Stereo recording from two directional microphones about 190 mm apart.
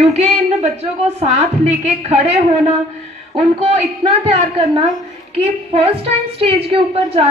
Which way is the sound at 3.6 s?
30° right (ahead or behind).